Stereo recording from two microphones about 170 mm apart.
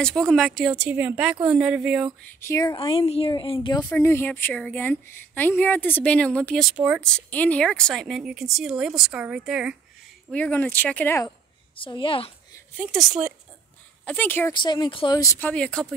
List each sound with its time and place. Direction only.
0.0 s speech: 5° left (ahead or behind)
2.2 s speech: 15° left (ahead or behind)
3.9 s a woman's voice: 15° left (ahead or behind); by 9.8 s 5° right (ahead or behind)
10.3 s a woman's voice: 10° left (ahead or behind)
11.7 s a woman's voice: 30° left (ahead or behind)
12.7 s speech: centre (ahead or behind)
14.0 s a woman's voice: 10° left (ahead or behind)
14.5 s speech: 25° left (ahead or behind); by 15.9 s 5° left (ahead or behind)